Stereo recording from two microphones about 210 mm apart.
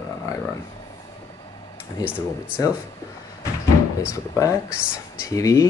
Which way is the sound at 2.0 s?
5° right (ahead or behind).